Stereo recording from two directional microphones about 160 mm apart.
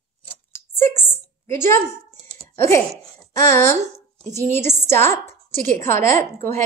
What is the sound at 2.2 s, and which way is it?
Typing, 40° right (ahead or behind).